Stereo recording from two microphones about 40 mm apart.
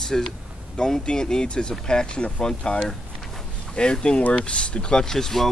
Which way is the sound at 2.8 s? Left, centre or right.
Centre.